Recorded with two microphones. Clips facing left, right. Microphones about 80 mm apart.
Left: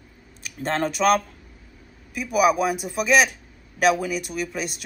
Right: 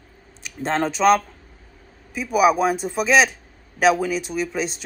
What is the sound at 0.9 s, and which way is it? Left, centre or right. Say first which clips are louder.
Speech: right 3 dB; centre.